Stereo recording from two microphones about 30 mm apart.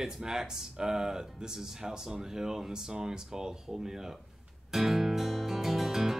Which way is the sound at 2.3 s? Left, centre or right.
Centre.